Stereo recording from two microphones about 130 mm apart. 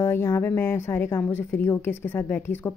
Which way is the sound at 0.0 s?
20° left (ahead or behind).